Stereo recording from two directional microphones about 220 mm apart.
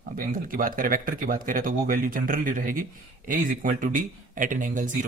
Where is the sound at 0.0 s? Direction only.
40° right (ahead or behind).